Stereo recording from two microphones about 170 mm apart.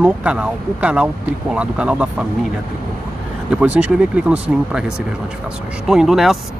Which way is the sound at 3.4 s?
5° right (ahead or behind).